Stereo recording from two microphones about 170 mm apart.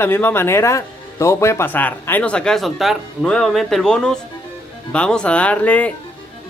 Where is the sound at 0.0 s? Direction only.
15° left (ahead or behind).